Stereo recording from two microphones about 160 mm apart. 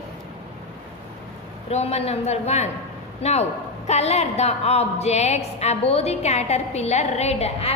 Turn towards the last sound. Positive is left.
turn(degrees=40)  # may be behind; listen again after turning